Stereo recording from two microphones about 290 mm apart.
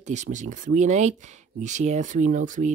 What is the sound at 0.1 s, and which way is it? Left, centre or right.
Speech, right.